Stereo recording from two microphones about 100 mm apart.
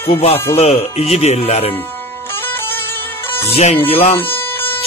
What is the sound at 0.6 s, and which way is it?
Speech, 90° left.